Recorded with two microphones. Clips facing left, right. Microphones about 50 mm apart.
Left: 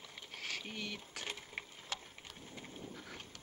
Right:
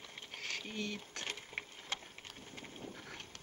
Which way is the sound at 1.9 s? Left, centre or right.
Right.